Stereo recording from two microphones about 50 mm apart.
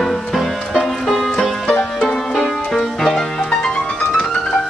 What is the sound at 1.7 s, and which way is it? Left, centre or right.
Music, left.